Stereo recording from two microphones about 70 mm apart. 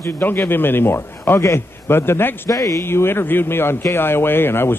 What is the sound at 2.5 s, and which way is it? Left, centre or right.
Speech, left.